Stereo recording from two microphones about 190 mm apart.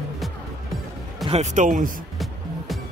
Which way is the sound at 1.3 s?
40° right (ahead or behind).